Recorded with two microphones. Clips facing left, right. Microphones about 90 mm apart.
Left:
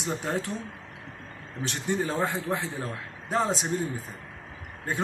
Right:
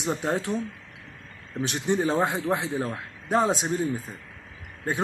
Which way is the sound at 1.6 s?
15° right (ahead or behind).